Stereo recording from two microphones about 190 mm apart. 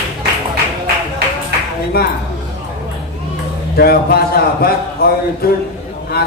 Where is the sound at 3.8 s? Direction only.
55° left (ahead or behind).